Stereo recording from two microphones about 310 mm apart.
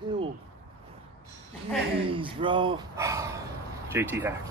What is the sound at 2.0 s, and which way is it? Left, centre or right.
Speech, centre.